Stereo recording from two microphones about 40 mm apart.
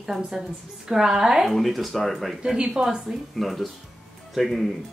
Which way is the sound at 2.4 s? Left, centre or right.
Centre.